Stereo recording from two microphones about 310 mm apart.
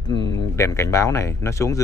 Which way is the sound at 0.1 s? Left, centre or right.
Centre.